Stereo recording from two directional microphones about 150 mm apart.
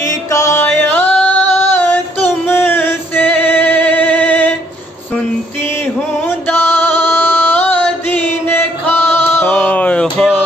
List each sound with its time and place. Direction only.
0.0 s music: 20° left (ahead or behind)
0.7 s yodeling: 15° left (ahead or behind)
1.6 s music: 15° left (ahead or behind)
6.2 s music: 10° left (ahead or behind)